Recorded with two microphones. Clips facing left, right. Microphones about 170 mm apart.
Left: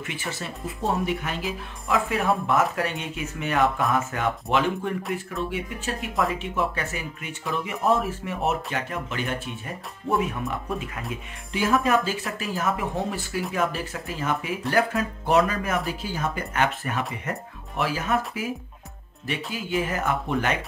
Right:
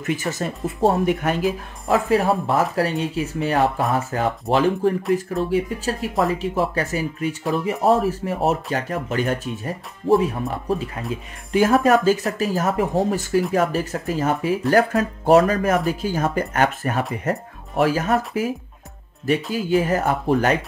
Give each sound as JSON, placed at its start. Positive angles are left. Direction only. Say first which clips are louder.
{"t": 0.0, "sound": "speech", "louder": "right 9 dB", "side_deg": -40}
{"t": 11.5, "sound": "speech", "louder": "right 6 dB", "side_deg": -45}
{"t": 19.5, "sound": "speech", "louder": "right 5 dB", "side_deg": -40}